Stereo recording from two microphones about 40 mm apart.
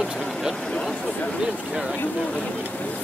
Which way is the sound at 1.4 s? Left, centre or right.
Centre.